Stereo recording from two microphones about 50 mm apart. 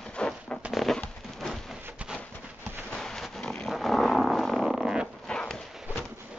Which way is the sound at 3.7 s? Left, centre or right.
Centre.